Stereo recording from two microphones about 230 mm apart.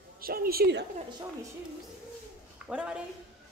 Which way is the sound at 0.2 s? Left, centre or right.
Right.